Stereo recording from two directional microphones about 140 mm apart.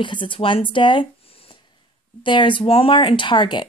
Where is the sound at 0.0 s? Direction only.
35° left (ahead or behind).